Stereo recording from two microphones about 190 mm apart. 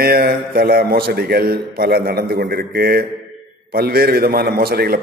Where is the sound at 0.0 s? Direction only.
50° right (ahead or behind).